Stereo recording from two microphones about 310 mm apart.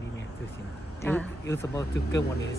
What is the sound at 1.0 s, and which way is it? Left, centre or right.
Speech, centre.